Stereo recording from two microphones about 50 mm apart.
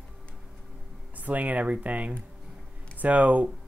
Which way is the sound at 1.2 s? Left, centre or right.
Right.